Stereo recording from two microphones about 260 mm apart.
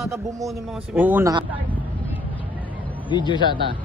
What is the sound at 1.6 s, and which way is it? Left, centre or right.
Vehicle, centre.